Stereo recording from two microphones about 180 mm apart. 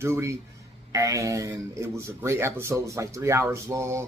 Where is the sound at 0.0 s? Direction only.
15° right (ahead or behind).